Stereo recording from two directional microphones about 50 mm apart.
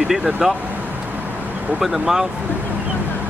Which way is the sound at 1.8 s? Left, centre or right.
Centre.